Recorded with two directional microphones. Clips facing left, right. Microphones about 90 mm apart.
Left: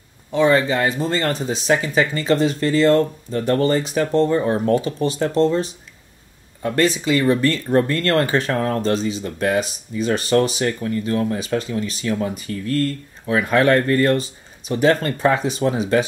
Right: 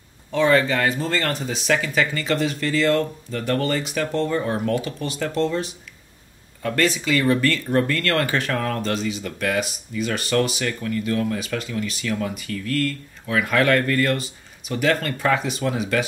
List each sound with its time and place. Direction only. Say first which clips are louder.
0.3 s speech: left 2 dB; 20° left (ahead or behind)